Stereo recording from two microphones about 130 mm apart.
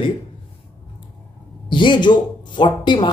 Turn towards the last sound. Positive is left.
turn(degrees=35)  # may be behind; listen again after turning